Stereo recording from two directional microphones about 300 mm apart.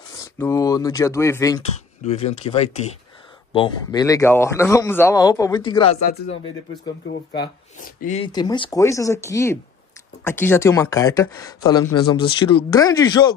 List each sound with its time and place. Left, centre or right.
0.1 s speech: centre
2.0 s speech: left